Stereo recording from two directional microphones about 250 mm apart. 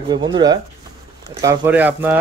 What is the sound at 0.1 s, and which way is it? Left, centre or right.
Speech, centre.